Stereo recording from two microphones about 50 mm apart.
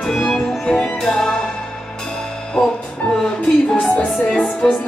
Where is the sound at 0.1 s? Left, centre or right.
Centre.